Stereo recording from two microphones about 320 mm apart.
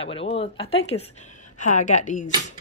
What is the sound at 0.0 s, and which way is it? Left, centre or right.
A woman's voice, centre.